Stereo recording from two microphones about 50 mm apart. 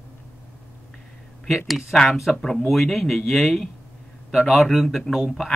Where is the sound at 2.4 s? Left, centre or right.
Centre.